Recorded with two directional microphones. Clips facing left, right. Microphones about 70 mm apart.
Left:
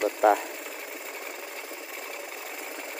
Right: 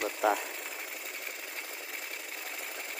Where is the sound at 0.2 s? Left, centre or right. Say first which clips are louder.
Left 7 dB; left.